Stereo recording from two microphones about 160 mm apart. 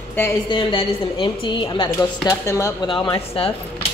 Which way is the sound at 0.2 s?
15° left (ahead or behind).